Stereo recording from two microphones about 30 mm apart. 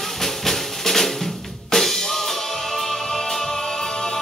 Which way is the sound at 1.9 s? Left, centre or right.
Centre.